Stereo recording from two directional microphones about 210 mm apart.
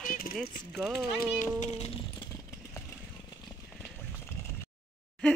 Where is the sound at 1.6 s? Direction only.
30° left (ahead or behind).